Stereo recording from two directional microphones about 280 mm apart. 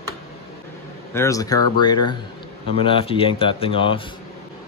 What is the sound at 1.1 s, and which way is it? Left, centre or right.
Speech, centre.